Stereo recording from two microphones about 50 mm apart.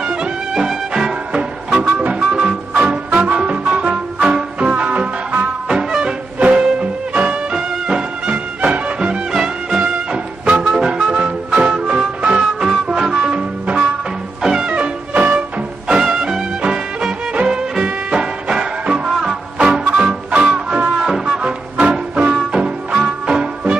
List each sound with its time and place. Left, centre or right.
0.0 s music: right
5.7 s music: centre
9.3 s music: centre
10.1 s music: right
14.7 s music: right
15.9 s music: centre